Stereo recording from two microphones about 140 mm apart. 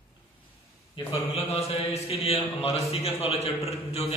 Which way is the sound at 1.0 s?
45° left (ahead or behind).